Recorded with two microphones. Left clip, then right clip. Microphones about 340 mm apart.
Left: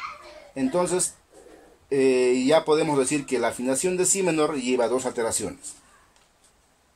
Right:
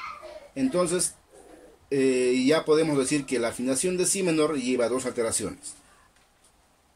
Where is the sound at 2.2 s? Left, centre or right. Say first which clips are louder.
Left 3 dB; left.